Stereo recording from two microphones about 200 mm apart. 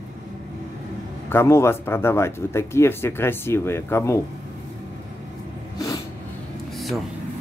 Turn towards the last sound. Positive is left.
turn(degrees=0)  # may be behind; listen again after turning